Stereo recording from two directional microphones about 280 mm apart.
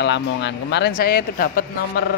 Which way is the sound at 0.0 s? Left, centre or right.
Left.